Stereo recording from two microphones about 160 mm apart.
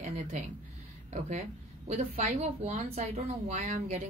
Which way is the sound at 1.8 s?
45° right (ahead or behind).